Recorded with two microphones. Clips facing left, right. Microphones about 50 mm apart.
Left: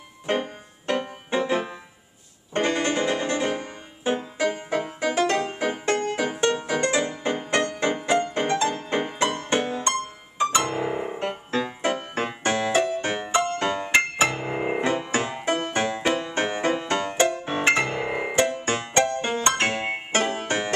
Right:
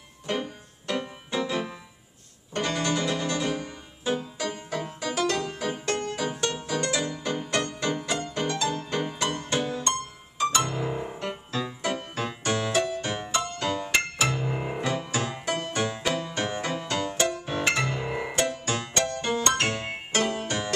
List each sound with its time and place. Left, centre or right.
0.3 s music: left